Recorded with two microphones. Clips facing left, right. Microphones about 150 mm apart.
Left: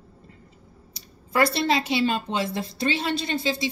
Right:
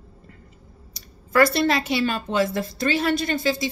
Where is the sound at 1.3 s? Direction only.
25° left (ahead or behind).